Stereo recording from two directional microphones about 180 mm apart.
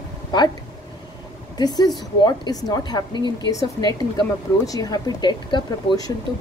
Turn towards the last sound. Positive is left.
turn(degrees=20)  # may be behind; listen again after turning